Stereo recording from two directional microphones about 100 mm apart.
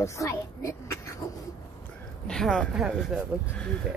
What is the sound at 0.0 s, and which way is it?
Speech, 30° left (ahead or behind).